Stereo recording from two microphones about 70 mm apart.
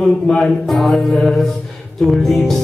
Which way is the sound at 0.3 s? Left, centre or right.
Centre.